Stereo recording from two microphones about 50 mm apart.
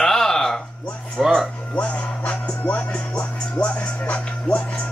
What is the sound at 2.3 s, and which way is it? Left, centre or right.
Music, left.